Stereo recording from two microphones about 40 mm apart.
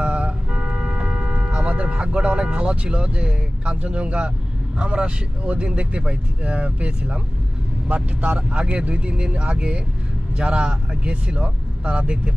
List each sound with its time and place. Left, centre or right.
0.0 s vehicle: right
4.7 s speech: right